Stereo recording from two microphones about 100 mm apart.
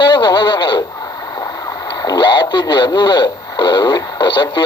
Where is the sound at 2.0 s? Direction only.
45° left (ahead or behind).